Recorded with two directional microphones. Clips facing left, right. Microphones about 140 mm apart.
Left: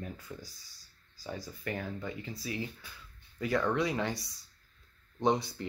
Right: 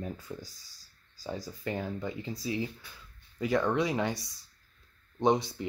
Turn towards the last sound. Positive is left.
turn(degrees=-20)  # may be behind; listen again after turning